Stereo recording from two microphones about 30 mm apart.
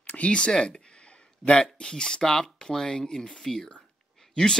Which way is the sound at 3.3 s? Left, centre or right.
Centre.